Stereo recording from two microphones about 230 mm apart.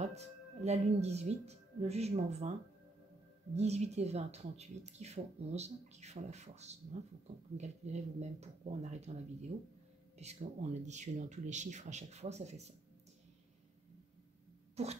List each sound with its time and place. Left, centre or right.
0.0 s speech: right
3.5 s speech: right